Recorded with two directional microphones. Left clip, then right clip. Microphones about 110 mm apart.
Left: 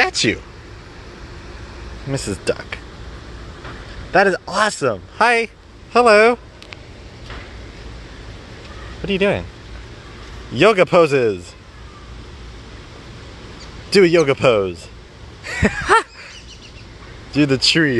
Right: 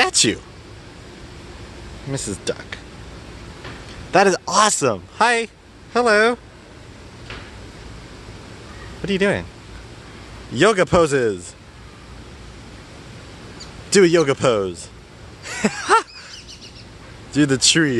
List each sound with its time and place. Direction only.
2.1 s speech: 15° left (ahead or behind)
4.1 s speech: 35° right (ahead or behind)
5.1 s a man's voice: 5° right (ahead or behind)
5.9 s a man's voice: 5° left (ahead or behind)
9.0 s speech: 20° right (ahead or behind)
10.5 s a man's voice: 5° right (ahead or behind)
13.9 s speech: 15° right (ahead or behind)
15.4 s a sound: 5° left (ahead or behind)
17.3 s speech: 10° right (ahead or behind)